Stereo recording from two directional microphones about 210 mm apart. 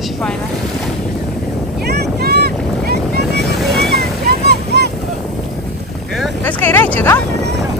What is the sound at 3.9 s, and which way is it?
Boat, 50° right (ahead or behind).